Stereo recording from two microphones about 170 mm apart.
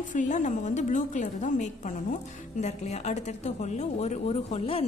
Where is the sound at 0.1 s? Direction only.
50° left (ahead or behind).